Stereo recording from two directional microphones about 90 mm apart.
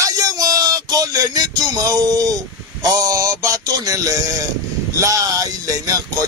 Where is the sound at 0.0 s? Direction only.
40° right (ahead or behind).